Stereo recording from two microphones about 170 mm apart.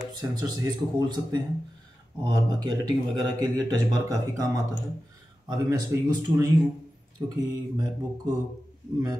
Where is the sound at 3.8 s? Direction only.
20° right (ahead or behind).